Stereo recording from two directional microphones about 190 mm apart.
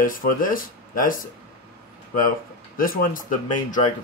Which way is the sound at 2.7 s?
50° left (ahead or behind).